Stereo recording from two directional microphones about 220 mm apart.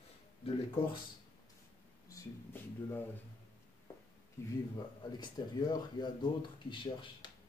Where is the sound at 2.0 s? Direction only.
10° left (ahead or behind).